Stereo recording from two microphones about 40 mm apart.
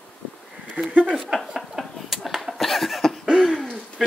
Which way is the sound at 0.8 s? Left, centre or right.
Right.